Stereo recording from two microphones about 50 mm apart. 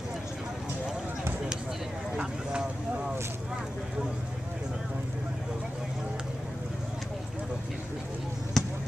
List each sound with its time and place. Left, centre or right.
8.6 s basketball bounce: centre